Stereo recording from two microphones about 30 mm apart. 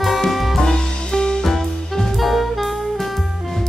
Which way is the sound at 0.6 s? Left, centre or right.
Left.